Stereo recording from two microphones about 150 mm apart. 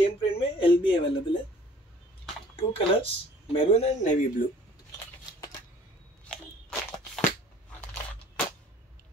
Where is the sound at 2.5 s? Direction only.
40° left (ahead or behind); by 4.5 s 55° left (ahead or behind).